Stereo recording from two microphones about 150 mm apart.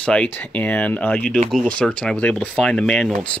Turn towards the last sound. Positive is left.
turn(degrees=5)  # may be behind; listen again after turning